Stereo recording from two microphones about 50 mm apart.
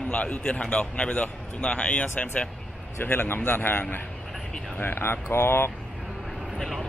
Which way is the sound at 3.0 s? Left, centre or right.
Left.